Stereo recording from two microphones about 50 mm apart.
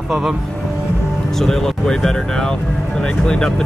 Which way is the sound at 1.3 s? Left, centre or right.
Centre.